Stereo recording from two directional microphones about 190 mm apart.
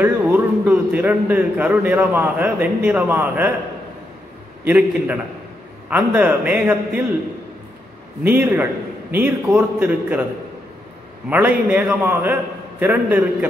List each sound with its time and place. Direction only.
0.0 s a man's voice: 10° right (ahead or behind)
4.6 s a man's voice: 10° right (ahead or behind)
8.2 s a man's voice: 10° right (ahead or behind)
11.2 s a man's voice: 10° right (ahead or behind)